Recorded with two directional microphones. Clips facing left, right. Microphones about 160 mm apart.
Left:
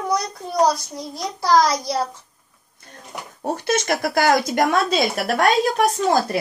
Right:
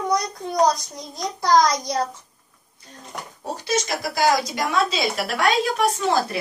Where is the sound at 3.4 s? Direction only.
55° left (ahead or behind).